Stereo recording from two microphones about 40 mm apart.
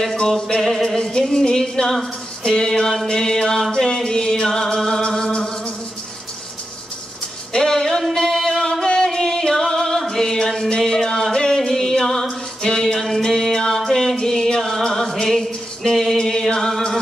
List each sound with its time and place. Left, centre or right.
0.0 s music: centre
0.8 s music: centre
7.5 s a sound: centre
9.6 s music: centre
12.3 s music: centre
16.2 s chant: centre
16.4 s music: centre